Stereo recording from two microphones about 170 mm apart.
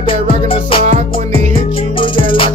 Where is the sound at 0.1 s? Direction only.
30° left (ahead or behind).